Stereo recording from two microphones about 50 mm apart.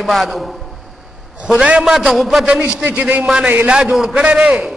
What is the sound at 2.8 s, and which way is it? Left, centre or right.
Speech, right.